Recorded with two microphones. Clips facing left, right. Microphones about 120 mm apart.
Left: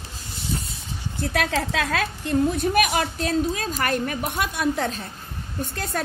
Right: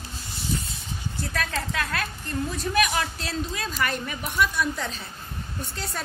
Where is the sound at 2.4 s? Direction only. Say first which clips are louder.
Left 4 dB; 55° left (ahead or behind).